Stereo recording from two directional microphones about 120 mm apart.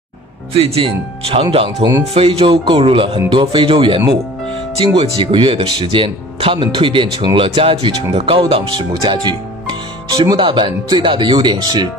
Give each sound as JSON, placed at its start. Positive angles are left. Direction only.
{"t": 0.6, "sound": "speech", "side_deg": -55}
{"t": 10.0, "sound": "speech", "side_deg": -30}
{"t": 10.3, "sound": "speech", "side_deg": -40}